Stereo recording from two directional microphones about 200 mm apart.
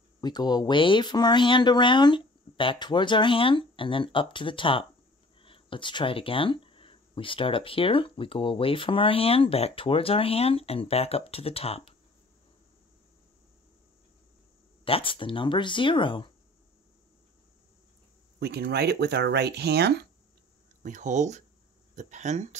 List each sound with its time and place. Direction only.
0.2 s speech: 20° left (ahead or behind)
14.9 s speech: 25° left (ahead or behind)
18.4 s speech: 55° right (ahead or behind)
20.8 s speech: 40° right (ahead or behind)